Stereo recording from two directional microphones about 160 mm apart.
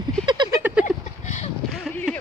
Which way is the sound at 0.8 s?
50° left (ahead or behind).